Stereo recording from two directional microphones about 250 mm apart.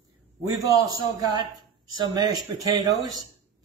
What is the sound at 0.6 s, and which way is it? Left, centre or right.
Speech, centre.